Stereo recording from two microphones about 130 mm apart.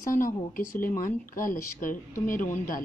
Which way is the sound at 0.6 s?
90° left.